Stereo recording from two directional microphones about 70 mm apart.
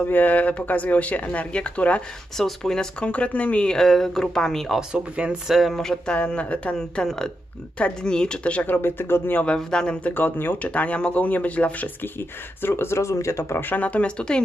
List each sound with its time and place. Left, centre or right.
0.0 s speech: left
2.3 s speech: centre
3.7 s speech: centre
4.7 s speech: centre
5.6 s speech: centre; by 9.4 s left
9.6 s speech: centre
10.1 s speech: left